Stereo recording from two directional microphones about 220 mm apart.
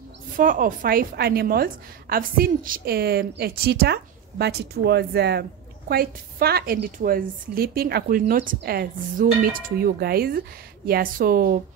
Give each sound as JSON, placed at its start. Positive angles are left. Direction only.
{"t": 0.4, "sound": "a woman's voice", "side_deg": -40}